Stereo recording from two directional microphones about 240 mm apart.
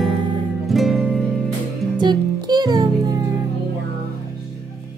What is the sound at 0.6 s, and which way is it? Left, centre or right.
Music, centre.